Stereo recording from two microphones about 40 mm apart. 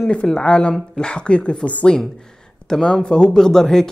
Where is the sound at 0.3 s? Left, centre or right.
Left.